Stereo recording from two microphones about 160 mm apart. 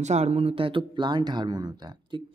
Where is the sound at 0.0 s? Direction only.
45° right (ahead or behind).